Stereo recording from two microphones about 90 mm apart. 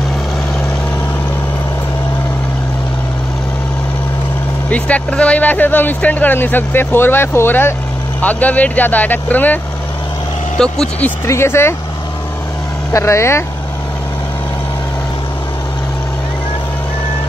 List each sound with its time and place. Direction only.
4.6 s speech: 15° left (ahead or behind)
10.6 s speech: 10° left (ahead or behind)
11.2 s speech: 30° left (ahead or behind)
12.9 s speech: 30° left (ahead or behind)